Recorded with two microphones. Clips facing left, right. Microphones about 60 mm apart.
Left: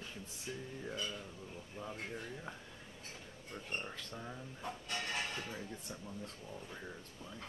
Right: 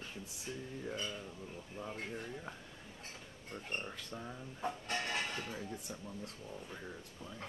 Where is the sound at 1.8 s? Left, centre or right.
Centre.